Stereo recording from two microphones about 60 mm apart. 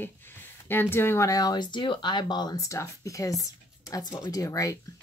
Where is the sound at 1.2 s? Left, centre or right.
Left.